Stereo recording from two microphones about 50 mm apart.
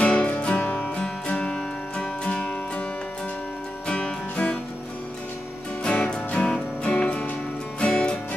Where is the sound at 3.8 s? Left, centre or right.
Left.